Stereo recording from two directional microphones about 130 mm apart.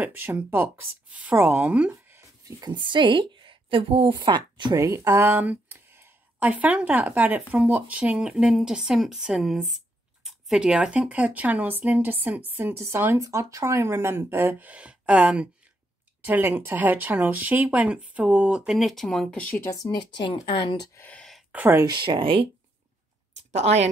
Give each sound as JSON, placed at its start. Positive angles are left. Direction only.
{"t": 0.0, "sound": "a woman's voice", "side_deg": -15}
{"t": 1.9, "sound": "a sound", "side_deg": -20}
{"t": 2.6, "sound": "a woman's voice", "side_deg": -35}
{"t": 19.4, "sound": "speech", "side_deg": 20}
{"t": 21.0, "sound": "a sound", "side_deg": 5}
{"t": 21.5, "sound": "speech", "side_deg": -10}
{"t": 21.7, "sound": "speech", "side_deg": -35}
{"t": 23.5, "sound": "speech", "side_deg": -55}